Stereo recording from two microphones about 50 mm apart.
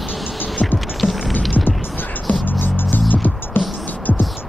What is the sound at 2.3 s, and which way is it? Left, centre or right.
Music, left.